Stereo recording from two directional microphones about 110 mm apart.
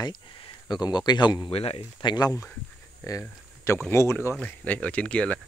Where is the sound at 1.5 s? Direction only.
65° left (ahead or behind).